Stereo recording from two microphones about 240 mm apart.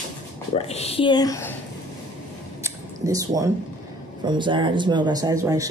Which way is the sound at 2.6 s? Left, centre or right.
Centre.